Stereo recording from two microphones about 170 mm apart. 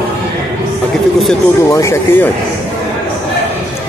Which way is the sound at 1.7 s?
15° left (ahead or behind).